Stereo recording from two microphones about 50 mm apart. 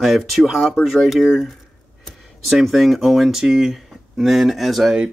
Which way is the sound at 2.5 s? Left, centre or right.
Centre.